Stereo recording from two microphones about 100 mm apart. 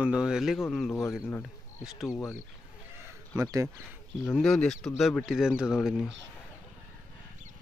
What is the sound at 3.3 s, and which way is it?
Speech, 30° right (ahead or behind).